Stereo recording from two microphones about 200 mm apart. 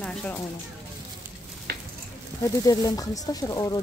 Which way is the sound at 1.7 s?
50° right (ahead or behind).